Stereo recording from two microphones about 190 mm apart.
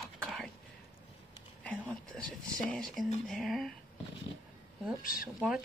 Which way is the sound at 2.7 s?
5° left (ahead or behind).